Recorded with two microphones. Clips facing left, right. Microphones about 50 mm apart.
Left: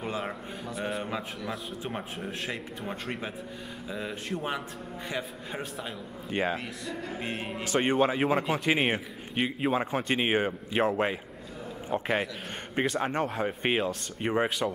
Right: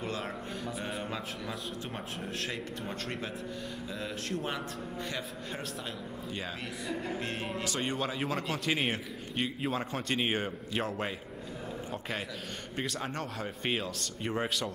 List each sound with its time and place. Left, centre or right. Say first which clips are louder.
0.0 s a sound: left 3 dB; centre
0.7 s a man's voice: left 6 dB; centre
6.3 s a man's voice: left 12 dB; left
7.2 s a man's voice: left 1 dB; centre
7.6 s a man's voice: left 11 dB; left
8.2 s a man's voice: left 7 dB; centre